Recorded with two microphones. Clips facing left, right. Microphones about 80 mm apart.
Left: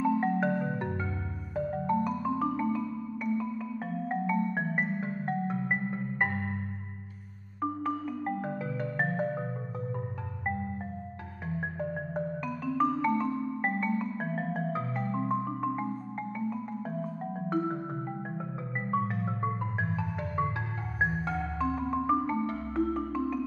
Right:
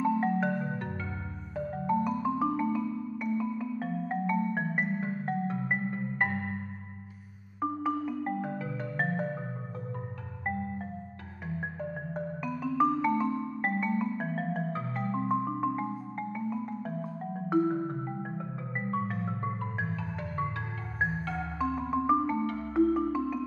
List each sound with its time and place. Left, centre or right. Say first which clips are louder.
0.0 s music: even; centre
0.6 s music: left 2 dB; left
1.5 s music: left 1 dB; centre
7.6 s music: right 1 dB; centre
12.1 s music: left 1 dB; centre
18.4 s music: even; centre
21.5 s music: right 2 dB; centre